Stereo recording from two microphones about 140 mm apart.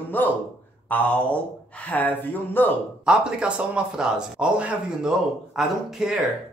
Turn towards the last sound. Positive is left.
turn(degrees=-5)  # may be behind; listen again after turning